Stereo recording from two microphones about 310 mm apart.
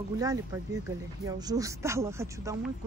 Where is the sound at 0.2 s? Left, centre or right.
Centre.